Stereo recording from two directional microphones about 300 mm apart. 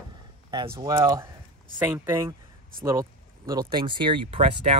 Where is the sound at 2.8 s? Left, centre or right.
Centre.